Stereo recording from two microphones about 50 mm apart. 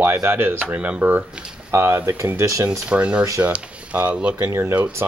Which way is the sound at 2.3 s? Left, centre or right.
Right.